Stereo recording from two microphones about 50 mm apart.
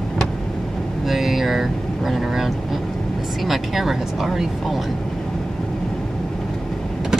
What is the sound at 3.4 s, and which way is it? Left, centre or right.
Speech, centre.